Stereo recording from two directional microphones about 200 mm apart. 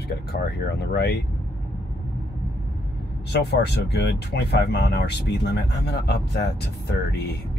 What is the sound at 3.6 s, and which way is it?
Speech, 55° left (ahead or behind).